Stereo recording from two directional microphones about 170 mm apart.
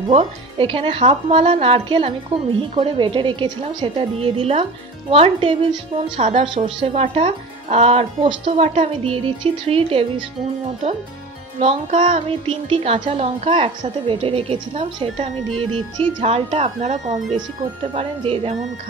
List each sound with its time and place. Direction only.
0.1 s speech: 35° right (ahead or behind)
11.6 s speech: 40° right (ahead or behind)